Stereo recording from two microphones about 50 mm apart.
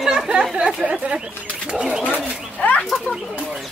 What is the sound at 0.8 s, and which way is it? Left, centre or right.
Speech, right.